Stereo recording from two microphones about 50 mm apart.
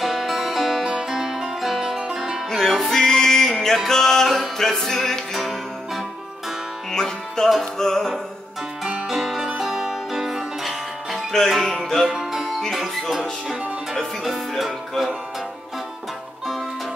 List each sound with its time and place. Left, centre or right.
0.0 s music: centre
2.5 s music: centre
6.9 s music: centre
8.8 s music: centre
14.2 s music: centre